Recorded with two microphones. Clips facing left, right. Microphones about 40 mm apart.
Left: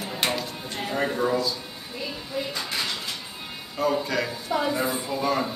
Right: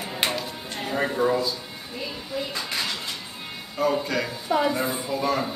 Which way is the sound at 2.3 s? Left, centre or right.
Centre.